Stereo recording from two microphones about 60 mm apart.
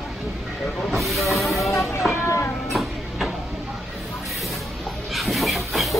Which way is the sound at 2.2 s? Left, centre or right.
Left.